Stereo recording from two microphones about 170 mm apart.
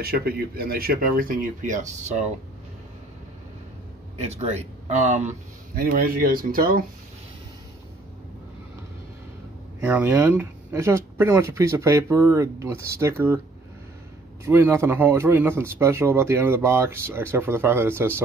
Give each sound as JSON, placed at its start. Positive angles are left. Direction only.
{"t": 0.0, "sound": "speech", "side_deg": -65}
{"t": 4.2, "sound": "speech", "side_deg": -40}
{"t": 5.8, "sound": "speech", "side_deg": -55}
{"t": 9.8, "sound": "speech", "side_deg": -15}
{"t": 14.4, "sound": "speech", "side_deg": -15}